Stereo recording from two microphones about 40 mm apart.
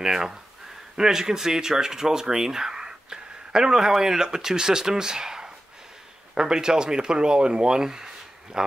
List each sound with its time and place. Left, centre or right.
0.0 s speech: centre